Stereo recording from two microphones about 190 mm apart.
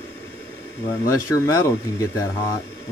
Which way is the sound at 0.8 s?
15° left (ahead or behind).